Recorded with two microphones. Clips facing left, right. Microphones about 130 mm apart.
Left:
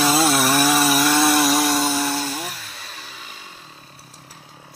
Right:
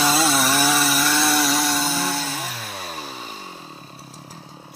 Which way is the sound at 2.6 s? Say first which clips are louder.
Right 7 dB; 50° right (ahead or behind).